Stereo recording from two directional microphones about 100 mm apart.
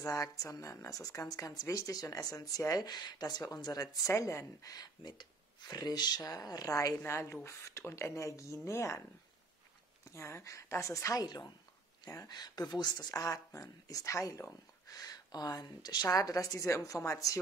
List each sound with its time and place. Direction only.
0.0 s speech: 35° left (ahead or behind)
4.7 s speech: 45° left (ahead or behind)
7.0 s speech: 25° left (ahead or behind)
10.1 s speech: 25° left (ahead or behind)